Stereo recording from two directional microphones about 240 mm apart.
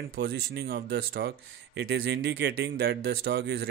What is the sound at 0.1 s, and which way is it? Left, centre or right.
Speech, right.